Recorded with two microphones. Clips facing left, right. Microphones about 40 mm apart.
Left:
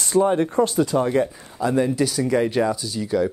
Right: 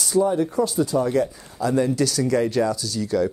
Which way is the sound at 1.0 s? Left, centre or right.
Left.